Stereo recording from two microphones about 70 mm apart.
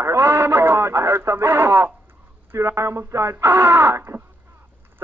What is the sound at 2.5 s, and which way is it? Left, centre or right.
Speech, right.